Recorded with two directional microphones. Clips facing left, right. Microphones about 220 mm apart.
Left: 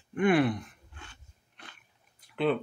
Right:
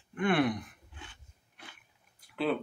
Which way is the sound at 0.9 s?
15° right (ahead or behind).